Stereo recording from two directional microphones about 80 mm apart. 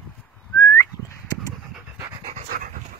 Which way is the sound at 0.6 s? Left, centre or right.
Left.